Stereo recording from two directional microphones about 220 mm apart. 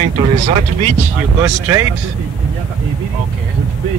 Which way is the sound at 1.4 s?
15° right (ahead or behind).